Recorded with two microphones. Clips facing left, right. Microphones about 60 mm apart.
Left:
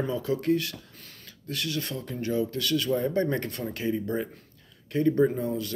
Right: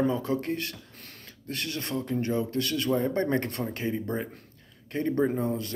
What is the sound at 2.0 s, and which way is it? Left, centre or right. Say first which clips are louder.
Speech: left 1 dB; right.